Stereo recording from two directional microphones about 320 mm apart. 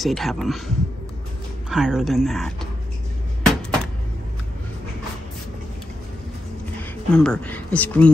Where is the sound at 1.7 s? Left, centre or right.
Centre.